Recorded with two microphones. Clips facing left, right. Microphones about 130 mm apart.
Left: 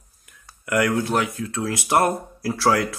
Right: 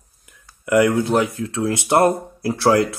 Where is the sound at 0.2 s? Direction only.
20° right (ahead or behind).